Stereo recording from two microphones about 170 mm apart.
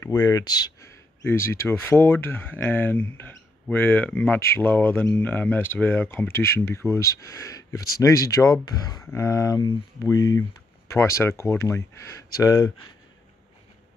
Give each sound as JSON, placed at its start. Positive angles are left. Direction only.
{"t": 0.0, "sound": "speech", "side_deg": 20}